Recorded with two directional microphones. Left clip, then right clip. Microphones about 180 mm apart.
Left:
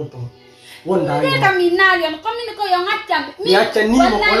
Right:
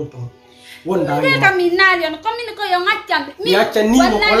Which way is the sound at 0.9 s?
25° right (ahead or behind).